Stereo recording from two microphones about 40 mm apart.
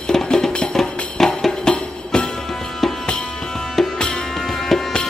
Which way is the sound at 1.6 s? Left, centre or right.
Left.